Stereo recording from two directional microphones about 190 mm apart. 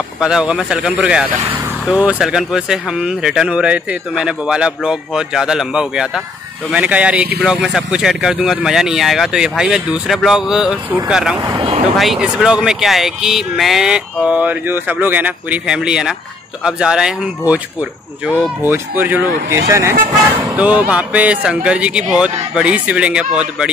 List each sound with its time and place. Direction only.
0.2 s speech: 5° right (ahead or behind)
11.4 s speech: 25° right (ahead or behind)
11.8 s speech: centre (ahead or behind)